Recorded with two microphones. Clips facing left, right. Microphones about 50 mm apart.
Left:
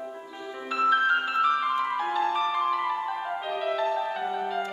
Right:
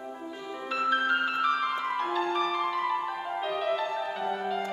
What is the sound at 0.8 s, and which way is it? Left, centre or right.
Music, centre.